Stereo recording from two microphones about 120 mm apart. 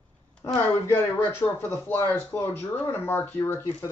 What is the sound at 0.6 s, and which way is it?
Speech, 20° left (ahead or behind).